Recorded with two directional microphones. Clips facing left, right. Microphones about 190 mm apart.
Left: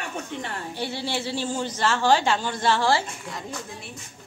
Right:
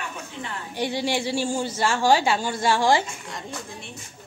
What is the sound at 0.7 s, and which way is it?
A woman's voice, 15° right (ahead or behind).